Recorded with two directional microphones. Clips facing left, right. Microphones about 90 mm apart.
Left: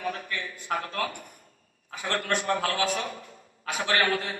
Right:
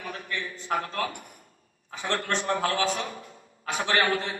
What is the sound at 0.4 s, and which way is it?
A man's voice, 30° right (ahead or behind).